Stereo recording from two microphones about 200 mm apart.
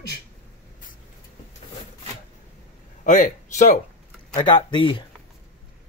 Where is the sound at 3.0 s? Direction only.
40° left (ahead or behind).